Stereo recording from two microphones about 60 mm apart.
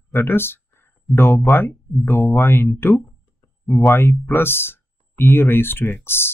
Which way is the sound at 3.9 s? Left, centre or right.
Left.